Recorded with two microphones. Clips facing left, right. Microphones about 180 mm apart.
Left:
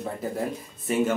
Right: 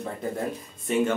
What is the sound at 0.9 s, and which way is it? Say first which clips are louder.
Speech: even; 5° left (ahead or behind).